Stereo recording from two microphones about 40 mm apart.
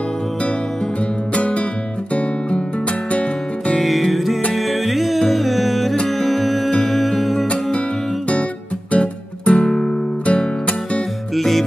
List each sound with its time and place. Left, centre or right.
1.3 s music: left
3.7 s music: centre
8.9 s music: left
9.7 s guitar: centre
10.2 s music: left
11.3 s music: centre